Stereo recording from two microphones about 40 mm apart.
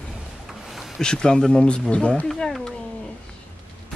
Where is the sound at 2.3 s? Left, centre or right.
Centre.